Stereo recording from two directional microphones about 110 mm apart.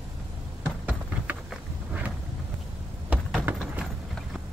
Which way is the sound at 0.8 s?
15° right (ahead or behind).